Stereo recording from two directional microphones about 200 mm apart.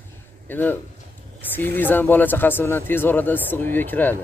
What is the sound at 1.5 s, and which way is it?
Speech, 10° left (ahead or behind).